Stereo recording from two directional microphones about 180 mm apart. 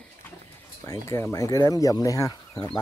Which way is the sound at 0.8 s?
15° left (ahead or behind).